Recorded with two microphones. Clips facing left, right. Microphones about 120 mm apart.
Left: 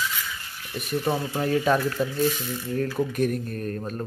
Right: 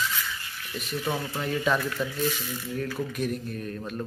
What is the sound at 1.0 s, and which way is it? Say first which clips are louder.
Speech: left 4 dB; 25° left (ahead or behind).